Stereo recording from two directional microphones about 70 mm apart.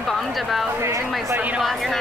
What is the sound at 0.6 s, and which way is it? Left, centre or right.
Speech, right.